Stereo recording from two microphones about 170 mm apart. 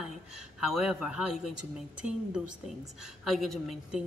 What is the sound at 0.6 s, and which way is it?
A man's voice, centre (ahead or behind).